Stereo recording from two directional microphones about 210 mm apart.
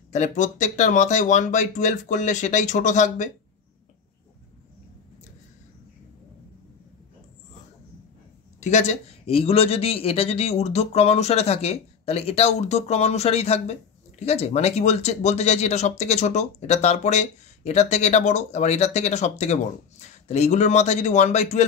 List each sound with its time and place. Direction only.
0.1 s speech: 35° left (ahead or behind)
8.5 s a man's voice: 35° left (ahead or behind)